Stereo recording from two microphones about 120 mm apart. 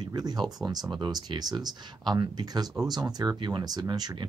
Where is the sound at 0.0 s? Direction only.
35° right (ahead or behind).